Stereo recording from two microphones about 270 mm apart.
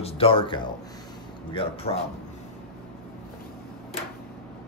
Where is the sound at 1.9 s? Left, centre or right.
Left.